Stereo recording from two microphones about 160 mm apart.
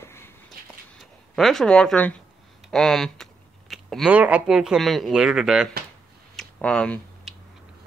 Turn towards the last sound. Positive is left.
turn(degrees=5)  # may be behind; listen again after turning